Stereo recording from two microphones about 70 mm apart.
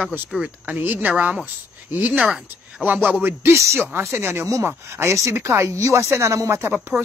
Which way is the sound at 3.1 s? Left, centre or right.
Right.